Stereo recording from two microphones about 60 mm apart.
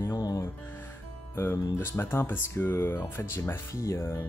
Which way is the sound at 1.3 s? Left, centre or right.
Left.